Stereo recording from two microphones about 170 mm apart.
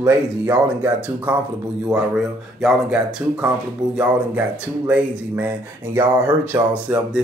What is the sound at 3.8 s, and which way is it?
Speech, 25° right (ahead or behind).